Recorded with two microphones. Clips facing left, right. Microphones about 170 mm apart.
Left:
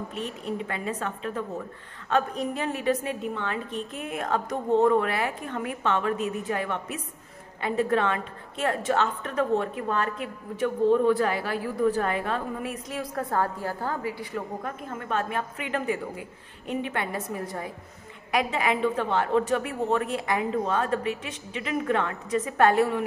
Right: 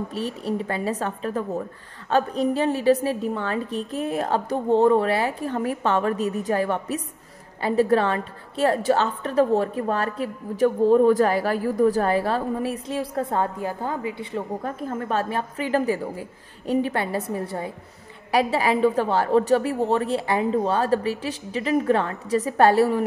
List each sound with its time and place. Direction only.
0.1 s a woman's voice: 35° right (ahead or behind)